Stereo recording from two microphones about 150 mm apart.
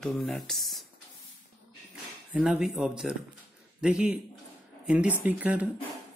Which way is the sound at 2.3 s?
5° right (ahead or behind).